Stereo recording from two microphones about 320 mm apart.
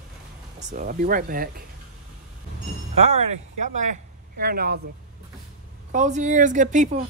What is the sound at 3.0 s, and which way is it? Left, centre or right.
A woman's voice, centre.